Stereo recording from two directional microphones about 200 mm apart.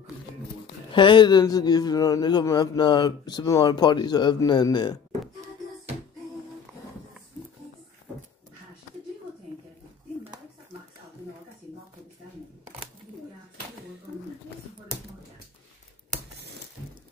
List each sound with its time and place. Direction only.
0.9 s a man's voice: 25° left (ahead or behind)